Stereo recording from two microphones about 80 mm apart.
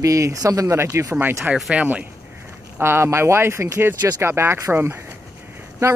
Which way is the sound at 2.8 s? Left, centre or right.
Right.